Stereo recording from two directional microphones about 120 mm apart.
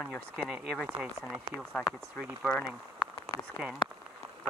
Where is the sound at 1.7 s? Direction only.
10° left (ahead or behind).